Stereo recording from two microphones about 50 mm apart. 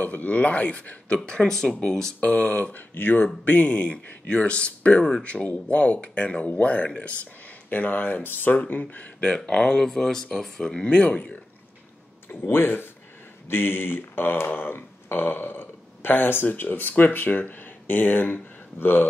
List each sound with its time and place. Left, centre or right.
0.0 s speech: left
9.3 s speech: centre
10.9 s speech: left
12.3 s speech: left